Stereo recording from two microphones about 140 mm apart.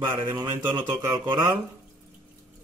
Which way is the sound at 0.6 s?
30° right (ahead or behind).